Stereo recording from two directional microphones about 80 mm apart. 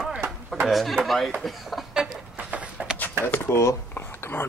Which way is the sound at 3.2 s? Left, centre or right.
Left.